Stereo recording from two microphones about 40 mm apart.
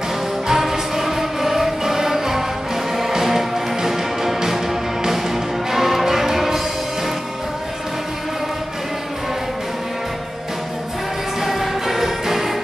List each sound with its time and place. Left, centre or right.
0.5 s music: centre
11.4 s music: centre